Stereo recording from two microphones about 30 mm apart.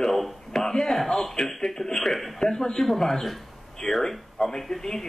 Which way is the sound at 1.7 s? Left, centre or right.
Centre.